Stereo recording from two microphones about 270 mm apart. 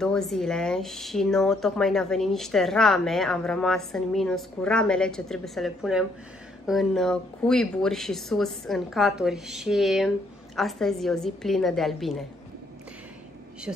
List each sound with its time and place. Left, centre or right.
0.0 s speech: centre